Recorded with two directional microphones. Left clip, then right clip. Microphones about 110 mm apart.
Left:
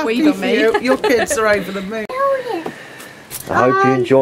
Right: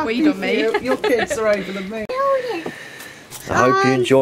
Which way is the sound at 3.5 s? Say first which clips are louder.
Left 2 dB; 40° right (ahead or behind).